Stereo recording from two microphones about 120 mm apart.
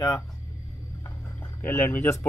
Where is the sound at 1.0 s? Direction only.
15° left (ahead or behind).